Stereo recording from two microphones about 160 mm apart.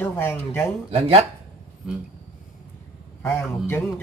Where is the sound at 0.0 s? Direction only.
15° left (ahead or behind).